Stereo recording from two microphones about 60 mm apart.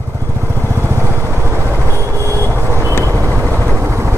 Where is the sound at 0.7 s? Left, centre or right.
Right.